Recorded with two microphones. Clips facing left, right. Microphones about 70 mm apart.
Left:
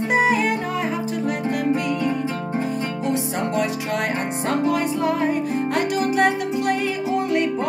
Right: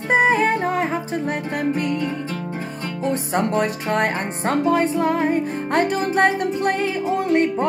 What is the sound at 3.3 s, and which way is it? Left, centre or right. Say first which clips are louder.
Music: right 2 dB; right.